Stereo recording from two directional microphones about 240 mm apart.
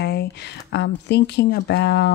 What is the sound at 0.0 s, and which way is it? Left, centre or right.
Speech, left.